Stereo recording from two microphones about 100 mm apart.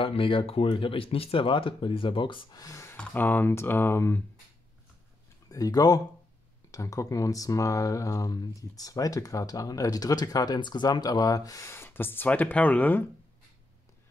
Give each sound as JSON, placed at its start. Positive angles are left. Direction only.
{"t": 0.0, "sound": "speech", "side_deg": 60}
{"t": 2.5, "sound": "speech", "side_deg": 35}
{"t": 3.0, "sound": "speech", "side_deg": 15}
{"t": 5.5, "sound": "speech", "side_deg": 40}